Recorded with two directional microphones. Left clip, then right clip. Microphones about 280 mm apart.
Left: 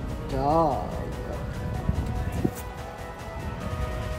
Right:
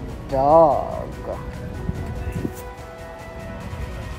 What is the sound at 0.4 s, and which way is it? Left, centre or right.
Speech, right.